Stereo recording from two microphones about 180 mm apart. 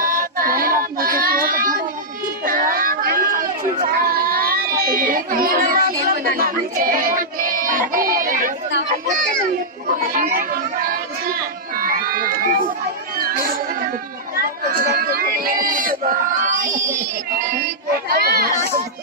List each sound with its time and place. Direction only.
0.0 s child singing: 50° right (ahead or behind)
2.4 s chatter: 50° right (ahead or behind)
9.9 s speech: 50° right (ahead or behind)
11.7 s crowd: 50° right (ahead or behind)
13.2 s a sound: 50° right (ahead or behind)
17.9 s chatter: 55° right (ahead or behind)